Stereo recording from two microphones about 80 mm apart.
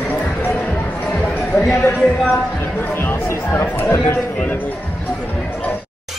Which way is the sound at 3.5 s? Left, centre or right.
Left.